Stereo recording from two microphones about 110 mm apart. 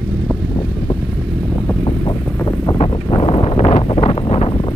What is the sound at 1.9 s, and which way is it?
Boat, 50° left (ahead or behind).